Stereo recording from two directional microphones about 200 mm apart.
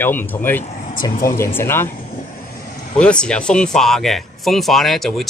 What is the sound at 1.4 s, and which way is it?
Speech, 10° left (ahead or behind).